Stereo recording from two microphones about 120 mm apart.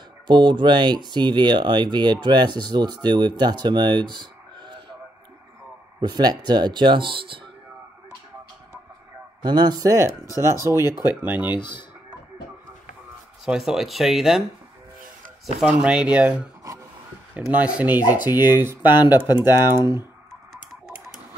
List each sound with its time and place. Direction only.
0.3 s speech: 40° right (ahead or behind)
5.9 s speech: 35° right (ahead or behind)
9.4 s speech: 35° right (ahead or behind); by 11.5 s 15° right (ahead or behind)
11.5 s speech: 40° left (ahead or behind)
13.5 s speech: 5° right (ahead or behind)
15.6 s speech: 10° right (ahead or behind)
17.5 s speech: 10° right (ahead or behind)